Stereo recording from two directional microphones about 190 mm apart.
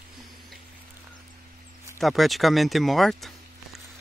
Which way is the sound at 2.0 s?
Centre (ahead or behind).